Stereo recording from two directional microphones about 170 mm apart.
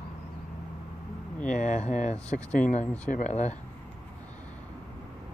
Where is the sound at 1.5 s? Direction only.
45° left (ahead or behind).